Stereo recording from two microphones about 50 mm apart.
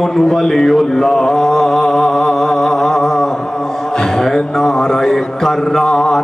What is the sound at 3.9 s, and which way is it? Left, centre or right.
Mantra, centre.